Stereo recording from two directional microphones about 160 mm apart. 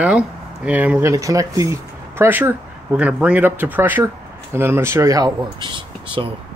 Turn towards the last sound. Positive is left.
turn(degrees=-30)  # may be behind; listen again after turning